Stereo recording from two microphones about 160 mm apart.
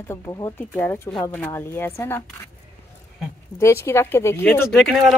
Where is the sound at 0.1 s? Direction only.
15° left (ahead or behind).